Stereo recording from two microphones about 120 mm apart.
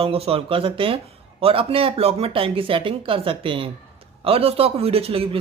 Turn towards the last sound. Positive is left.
turn(degrees=-50)  # may be behind; listen again after turning